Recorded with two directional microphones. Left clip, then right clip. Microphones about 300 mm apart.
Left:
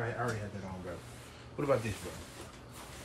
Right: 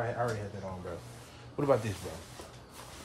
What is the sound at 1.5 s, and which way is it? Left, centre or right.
Speech, right.